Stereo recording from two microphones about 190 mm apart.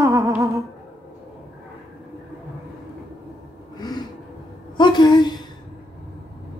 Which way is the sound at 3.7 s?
20° left (ahead or behind).